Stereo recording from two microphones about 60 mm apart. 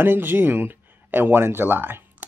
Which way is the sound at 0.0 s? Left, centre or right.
Right.